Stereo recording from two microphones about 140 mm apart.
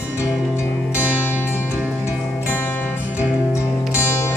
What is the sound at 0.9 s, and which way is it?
Music, 15° left (ahead or behind).